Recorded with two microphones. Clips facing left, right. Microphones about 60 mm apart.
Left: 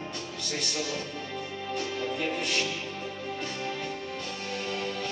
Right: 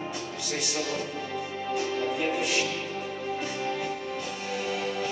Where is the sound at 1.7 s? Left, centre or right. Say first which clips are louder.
Right 4 dB; centre.